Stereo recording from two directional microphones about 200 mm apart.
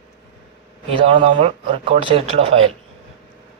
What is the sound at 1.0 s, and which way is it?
Speech, 25° right (ahead or behind).